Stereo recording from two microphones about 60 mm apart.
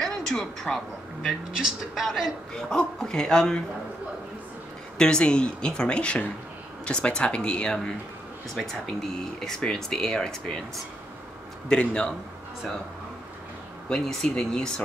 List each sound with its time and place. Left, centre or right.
0.0 s a man's voice: centre
1.6 s speech: centre
2.5 s speech: centre
4.9 s speech: centre
11.7 s speech: centre
13.8 s speech: centre